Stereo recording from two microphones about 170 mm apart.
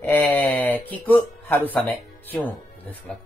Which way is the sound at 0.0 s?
10° left (ahead or behind).